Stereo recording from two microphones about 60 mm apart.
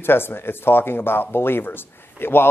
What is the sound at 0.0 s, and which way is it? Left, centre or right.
Speech, left.